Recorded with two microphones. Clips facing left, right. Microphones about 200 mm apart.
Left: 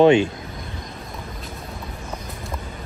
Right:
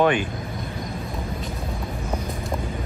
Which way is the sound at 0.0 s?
25° left (ahead or behind).